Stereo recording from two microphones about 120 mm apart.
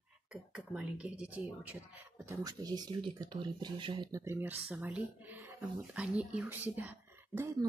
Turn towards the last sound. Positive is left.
turn(degrees=-20)  # may be behind; listen again after turning